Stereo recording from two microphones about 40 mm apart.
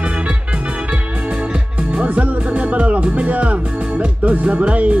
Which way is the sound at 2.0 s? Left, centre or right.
Right.